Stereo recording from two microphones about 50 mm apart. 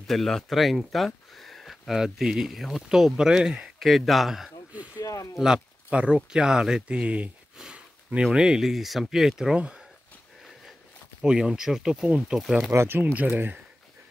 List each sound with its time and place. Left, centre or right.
0.0 s speech: centre
1.9 s speech: centre
4.9 s speech: left
5.9 s speech: right
7.7 s sniff: right
8.3 s speech: centre
11.1 s speech: centre
12.7 s speech: right
13.0 s speech: right